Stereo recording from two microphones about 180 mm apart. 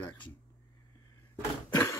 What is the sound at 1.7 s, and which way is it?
Cough, 15° left (ahead or behind).